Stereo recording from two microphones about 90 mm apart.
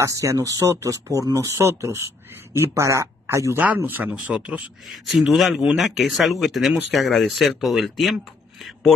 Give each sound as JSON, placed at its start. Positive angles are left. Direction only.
{"t": 0.0, "sound": "speech", "side_deg": -35}
{"t": 3.5, "sound": "speech", "side_deg": -20}